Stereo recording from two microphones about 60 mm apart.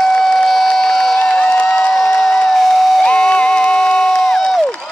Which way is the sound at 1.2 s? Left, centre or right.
Centre.